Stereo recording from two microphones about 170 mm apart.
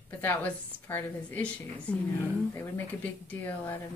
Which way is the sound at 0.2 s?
10° left (ahead or behind).